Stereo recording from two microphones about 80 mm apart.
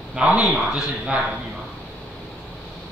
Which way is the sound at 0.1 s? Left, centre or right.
Centre.